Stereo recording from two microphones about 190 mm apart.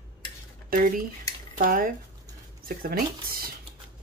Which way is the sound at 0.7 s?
45° right (ahead or behind).